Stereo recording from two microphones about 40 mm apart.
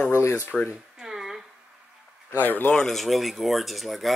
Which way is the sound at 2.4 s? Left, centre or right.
Left.